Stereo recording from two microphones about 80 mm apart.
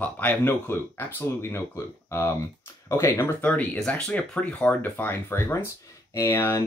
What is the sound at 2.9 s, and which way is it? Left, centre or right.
Speech, left.